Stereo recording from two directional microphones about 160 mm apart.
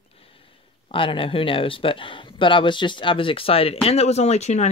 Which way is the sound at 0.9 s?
35° left (ahead or behind).